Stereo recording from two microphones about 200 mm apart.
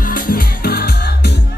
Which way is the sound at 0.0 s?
45° left (ahead or behind).